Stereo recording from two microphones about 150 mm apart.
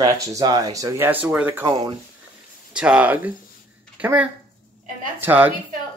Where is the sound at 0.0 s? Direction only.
25° right (ahead or behind).